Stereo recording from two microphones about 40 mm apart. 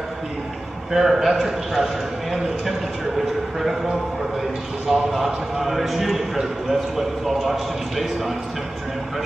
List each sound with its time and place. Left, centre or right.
0.9 s speech: centre